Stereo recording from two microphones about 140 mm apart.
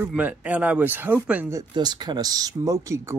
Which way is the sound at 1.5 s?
30° right (ahead or behind).